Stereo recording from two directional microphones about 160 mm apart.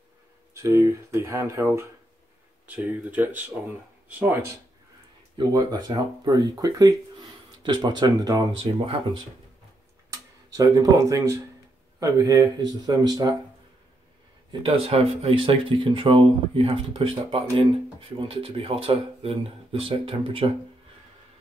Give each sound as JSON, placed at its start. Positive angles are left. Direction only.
{"t": 0.6, "sound": "speech", "side_deg": -20}
{"t": 5.4, "sound": "speech", "side_deg": -25}
{"t": 10.1, "sound": "speech", "side_deg": -20}
{"t": 14.5, "sound": "speech", "side_deg": -35}